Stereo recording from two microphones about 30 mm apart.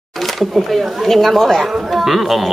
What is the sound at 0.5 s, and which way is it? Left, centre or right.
A woman's voice, centre.